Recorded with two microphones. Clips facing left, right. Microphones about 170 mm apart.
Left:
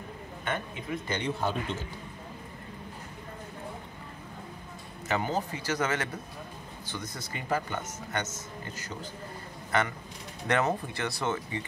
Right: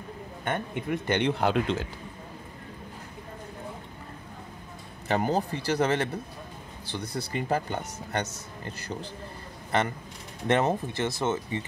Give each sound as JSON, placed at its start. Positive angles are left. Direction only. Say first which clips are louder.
{"t": 0.5, "sound": "speech", "louder": "right 4 dB", "side_deg": -60}
{"t": 5.0, "sound": "speech", "louder": "right 4 dB", "side_deg": -40}
{"t": 7.2, "sound": "speech", "louder": "right 4 dB", "side_deg": -35}
{"t": 9.7, "sound": "speech", "louder": "right 2 dB", "side_deg": -25}